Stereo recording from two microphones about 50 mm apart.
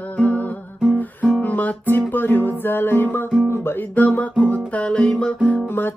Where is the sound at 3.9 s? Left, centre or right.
Left.